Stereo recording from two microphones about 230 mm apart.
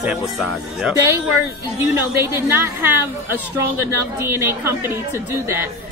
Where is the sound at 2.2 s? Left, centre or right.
Centre.